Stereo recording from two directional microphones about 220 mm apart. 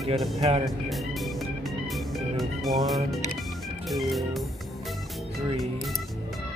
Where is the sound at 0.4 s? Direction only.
25° right (ahead or behind).